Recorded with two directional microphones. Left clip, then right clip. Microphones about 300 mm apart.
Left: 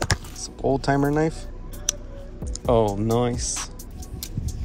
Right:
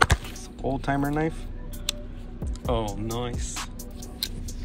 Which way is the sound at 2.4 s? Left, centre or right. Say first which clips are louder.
Left 8 dB; centre.